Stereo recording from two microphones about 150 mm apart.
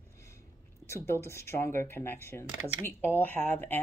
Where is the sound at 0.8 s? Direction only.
20° left (ahead or behind).